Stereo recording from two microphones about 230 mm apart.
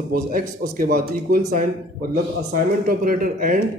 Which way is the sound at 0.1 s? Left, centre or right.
Right.